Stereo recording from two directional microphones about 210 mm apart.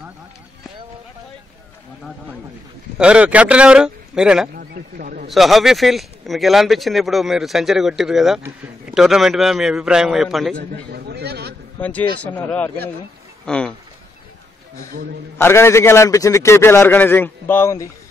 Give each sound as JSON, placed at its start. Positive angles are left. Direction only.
{"t": 3.0, "sound": "speech", "side_deg": -5}
{"t": 4.6, "sound": "speech", "side_deg": -45}
{"t": 5.3, "sound": "speech", "side_deg": 0}
{"t": 10.5, "sound": "a man's voice", "side_deg": -50}
{"t": 12.2, "sound": "a man's voice", "side_deg": 5}
{"t": 15.3, "sound": "a man's voice", "side_deg": 10}